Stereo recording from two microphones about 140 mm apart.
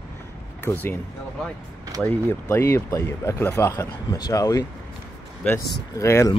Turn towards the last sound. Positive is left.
turn(degrees=20)  # may be behind; listen again after turning